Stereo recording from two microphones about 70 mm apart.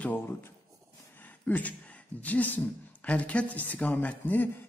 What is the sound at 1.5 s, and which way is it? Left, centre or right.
Speech, left.